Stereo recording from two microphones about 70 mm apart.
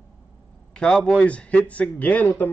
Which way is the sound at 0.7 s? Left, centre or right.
Centre.